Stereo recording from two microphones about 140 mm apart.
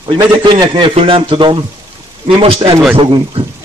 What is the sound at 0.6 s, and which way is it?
Speech, 40° right (ahead or behind).